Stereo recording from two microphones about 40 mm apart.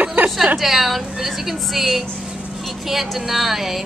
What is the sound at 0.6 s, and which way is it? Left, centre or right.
A woman's voice, centre.